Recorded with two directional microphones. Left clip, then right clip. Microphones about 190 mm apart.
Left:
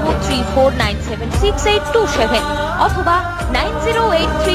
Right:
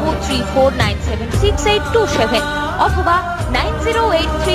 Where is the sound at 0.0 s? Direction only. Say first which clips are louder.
Left 1 dB; centre (ahead or behind).